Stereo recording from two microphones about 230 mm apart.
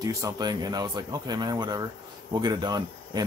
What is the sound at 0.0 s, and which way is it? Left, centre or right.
Speech, centre.